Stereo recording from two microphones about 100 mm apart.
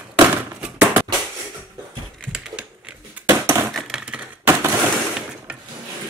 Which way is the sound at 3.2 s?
30° right (ahead or behind).